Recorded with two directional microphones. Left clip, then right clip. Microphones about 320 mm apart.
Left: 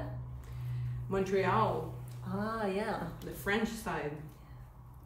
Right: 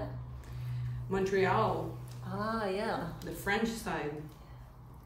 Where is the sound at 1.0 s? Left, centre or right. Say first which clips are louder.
Right 1 dB; centre.